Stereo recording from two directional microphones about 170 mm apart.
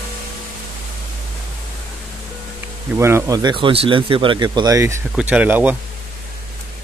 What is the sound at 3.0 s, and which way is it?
Speech, 15° right (ahead or behind).